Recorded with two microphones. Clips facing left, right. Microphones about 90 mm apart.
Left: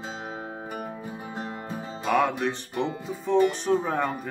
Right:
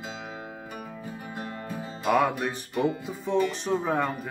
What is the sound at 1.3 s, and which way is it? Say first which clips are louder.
Music: left 1 dB; 25° left (ahead or behind).